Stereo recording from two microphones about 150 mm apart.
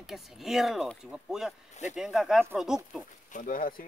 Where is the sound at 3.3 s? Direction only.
60° left (ahead or behind).